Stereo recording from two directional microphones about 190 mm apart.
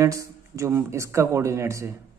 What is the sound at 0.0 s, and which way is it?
Speech, 15° right (ahead or behind).